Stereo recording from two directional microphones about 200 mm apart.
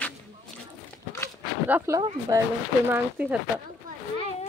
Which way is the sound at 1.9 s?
15° right (ahead or behind).